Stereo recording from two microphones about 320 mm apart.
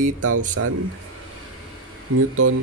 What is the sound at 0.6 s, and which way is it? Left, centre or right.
Speech, right.